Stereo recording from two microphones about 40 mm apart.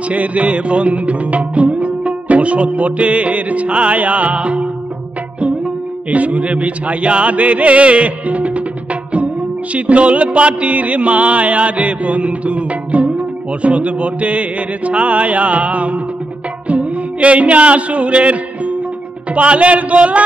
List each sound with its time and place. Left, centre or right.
0.1 s mantra: right
6.0 s mantra: right
9.8 s mantra: right
16.6 s music: right
19.3 s mantra: right